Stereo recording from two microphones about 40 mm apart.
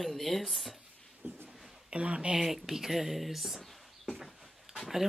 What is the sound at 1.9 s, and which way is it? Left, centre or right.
Speech, right.